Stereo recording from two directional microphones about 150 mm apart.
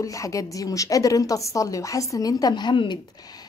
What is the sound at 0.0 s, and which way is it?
Speech, 20° left (ahead or behind).